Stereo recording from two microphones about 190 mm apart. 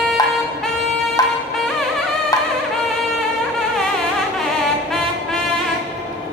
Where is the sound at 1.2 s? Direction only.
20° left (ahead or behind).